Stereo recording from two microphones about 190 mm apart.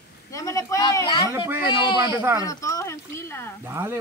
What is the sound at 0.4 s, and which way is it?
Speech, 15° left (ahead or behind).